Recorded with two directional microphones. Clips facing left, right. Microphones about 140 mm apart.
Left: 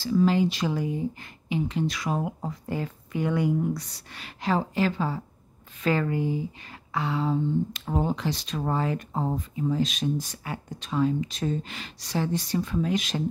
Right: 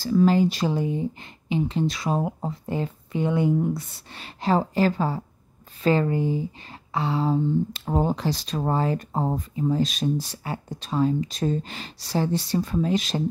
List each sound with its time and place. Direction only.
0.0 s speech: 45° right (ahead or behind)
5.8 s speech: 30° right (ahead or behind)